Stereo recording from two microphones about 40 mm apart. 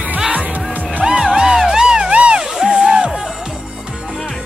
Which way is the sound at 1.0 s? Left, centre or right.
Centre.